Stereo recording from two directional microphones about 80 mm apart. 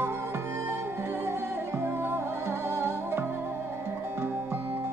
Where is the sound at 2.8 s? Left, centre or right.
Right.